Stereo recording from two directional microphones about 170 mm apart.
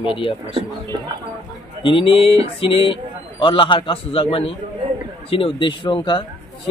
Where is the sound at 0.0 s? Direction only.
30° left (ahead or behind).